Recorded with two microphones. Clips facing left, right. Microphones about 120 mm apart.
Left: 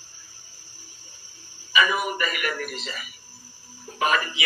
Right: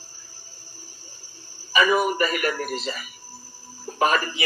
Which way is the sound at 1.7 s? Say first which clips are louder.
Right 4 dB; 35° right (ahead or behind).